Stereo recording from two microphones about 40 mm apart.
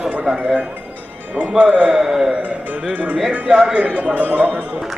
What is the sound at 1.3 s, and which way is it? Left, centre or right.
Speech, right.